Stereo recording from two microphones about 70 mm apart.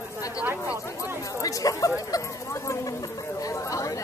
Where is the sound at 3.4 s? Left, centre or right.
Left.